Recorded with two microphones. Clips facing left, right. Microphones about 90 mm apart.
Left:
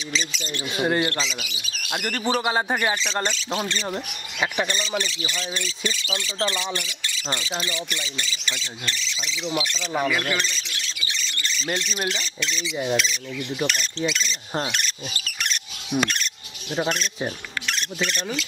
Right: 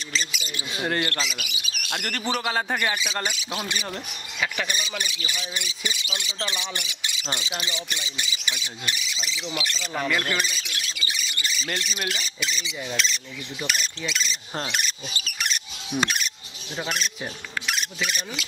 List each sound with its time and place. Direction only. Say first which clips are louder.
0.1 s speech: left 2 dB; 5° right (ahead or behind)
0.7 s speech: left 4 dB; 15° left (ahead or behind)
1.5 s bird: right 1 dB; 15° right (ahead or behind)
1.9 s a man's voice: left 4 dB; 20° left (ahead or behind)
4.6 s speech: left 4 dB; 15° right (ahead or behind); by 10.3 s 5° left (ahead or behind)
10.3 s squawk: left 1 dB; 10° right (ahead or behind)
12.1 s speech: left 2 dB; 5° right (ahead or behind)
15.9 s speech: left 2 dB; 10° left (ahead or behind)
17.6 s speech: left 2 dB; 5° right (ahead or behind)